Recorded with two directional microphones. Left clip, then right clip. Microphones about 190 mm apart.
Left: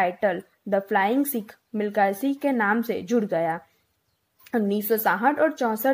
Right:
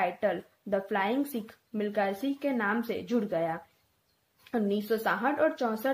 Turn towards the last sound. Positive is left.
turn(degrees=40)  # may be behind; listen again after turning